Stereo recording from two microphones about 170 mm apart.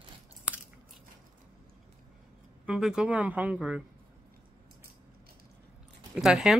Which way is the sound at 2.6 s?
5° right (ahead or behind).